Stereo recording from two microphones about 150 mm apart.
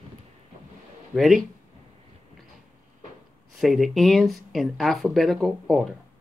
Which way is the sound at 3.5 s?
Centre (ahead or behind).